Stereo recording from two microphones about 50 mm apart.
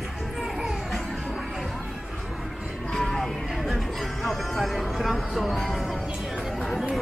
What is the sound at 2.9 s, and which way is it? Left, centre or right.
Music, centre.